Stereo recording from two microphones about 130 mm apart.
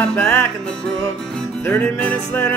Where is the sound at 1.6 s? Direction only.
15° left (ahead or behind).